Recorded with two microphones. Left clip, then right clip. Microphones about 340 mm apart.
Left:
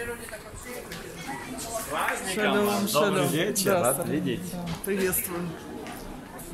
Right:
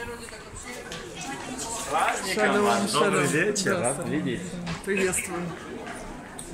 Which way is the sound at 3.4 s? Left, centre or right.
Left.